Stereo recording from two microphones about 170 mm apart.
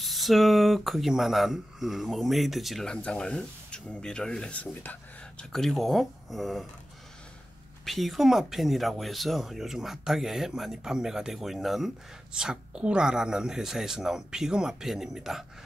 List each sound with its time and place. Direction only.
0.0 s speech: centre (ahead or behind)
7.8 s speech: centre (ahead or behind)